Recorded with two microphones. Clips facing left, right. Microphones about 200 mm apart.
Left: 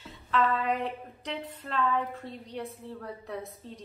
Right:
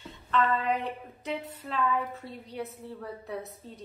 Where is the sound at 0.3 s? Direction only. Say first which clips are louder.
Even; centre (ahead or behind).